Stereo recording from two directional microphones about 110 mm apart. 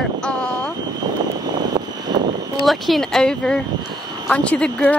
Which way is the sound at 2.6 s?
Centre (ahead or behind).